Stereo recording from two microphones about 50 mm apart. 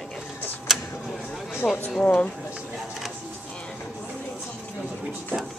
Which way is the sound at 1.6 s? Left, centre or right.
Centre.